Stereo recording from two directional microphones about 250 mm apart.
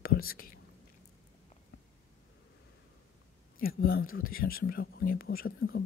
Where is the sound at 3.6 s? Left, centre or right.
Left.